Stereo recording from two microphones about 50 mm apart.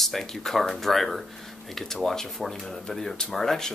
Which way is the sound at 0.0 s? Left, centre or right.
Centre.